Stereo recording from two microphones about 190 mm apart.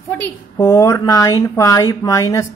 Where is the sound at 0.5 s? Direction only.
15° left (ahead or behind).